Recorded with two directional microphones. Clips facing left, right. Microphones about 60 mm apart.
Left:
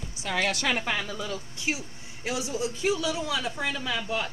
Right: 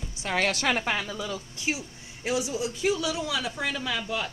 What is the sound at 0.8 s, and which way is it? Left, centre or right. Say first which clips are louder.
Speech: right 1 dB; right.